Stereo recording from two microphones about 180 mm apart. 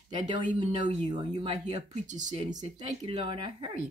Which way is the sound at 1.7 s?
40° right (ahead or behind).